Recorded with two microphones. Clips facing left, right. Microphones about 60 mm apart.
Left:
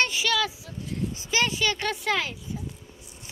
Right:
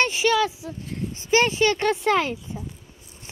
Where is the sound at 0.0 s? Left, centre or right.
Right.